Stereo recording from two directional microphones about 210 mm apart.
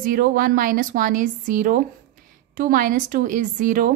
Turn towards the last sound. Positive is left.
turn(degrees=-40)  # may be behind; listen again after turning